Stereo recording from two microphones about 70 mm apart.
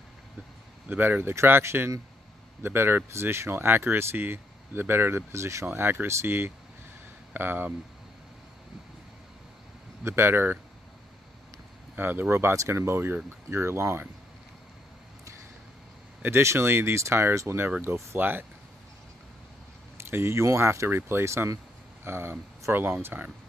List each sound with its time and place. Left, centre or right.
0.8 s speech: right
1.3 s speech: right
5.7 s speech: right
10.0 s speech: right
11.9 s speech: right
16.2 s speech: right
20.0 s speech: right